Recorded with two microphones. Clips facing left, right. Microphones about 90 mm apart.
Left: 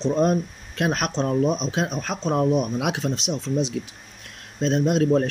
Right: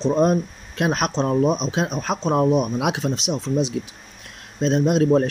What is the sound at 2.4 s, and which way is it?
Speech, 60° right (ahead or behind).